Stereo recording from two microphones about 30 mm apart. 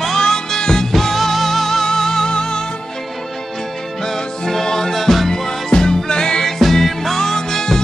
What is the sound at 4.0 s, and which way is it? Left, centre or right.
Music, centre.